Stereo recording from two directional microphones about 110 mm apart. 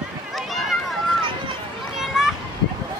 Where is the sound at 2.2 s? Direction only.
5° right (ahead or behind).